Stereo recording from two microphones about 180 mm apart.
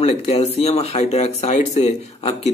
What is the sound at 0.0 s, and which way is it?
Speech, 35° left (ahead or behind).